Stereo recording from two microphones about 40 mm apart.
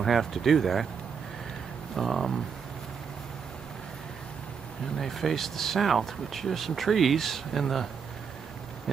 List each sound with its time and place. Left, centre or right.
0.0 s speech: centre
2.0 s speech: centre
4.9 s speech: centre